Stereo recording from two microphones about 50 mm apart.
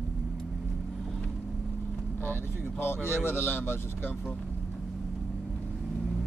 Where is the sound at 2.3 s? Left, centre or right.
Left.